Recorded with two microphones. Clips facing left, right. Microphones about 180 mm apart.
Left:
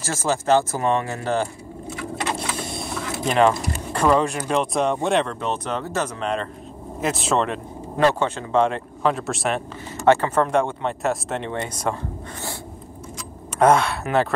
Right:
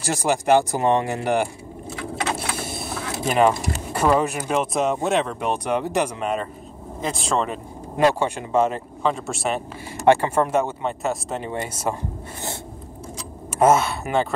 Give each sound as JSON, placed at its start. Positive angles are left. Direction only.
{"t": 0.0, "sound": "speech", "side_deg": -15}
{"t": 2.3, "sound": "vehicle", "side_deg": -5}
{"t": 3.9, "sound": "speech", "side_deg": -5}
{"t": 7.0, "sound": "speech", "side_deg": 5}
{"t": 9.9, "sound": "speech", "side_deg": -15}
{"t": 13.6, "sound": "speech", "side_deg": -5}